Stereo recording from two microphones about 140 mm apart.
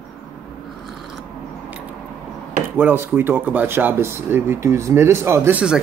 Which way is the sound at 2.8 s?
15° right (ahead or behind).